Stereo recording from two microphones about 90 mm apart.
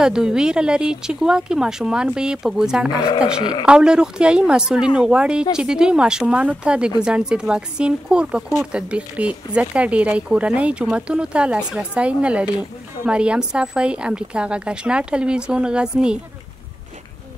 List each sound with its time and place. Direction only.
0.0 s a woman's voice: 5° right (ahead or behind)